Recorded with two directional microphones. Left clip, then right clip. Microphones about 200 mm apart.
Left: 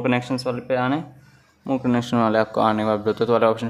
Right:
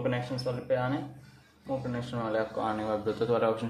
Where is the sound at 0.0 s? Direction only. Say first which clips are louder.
Left 9 dB; 40° left (ahead or behind).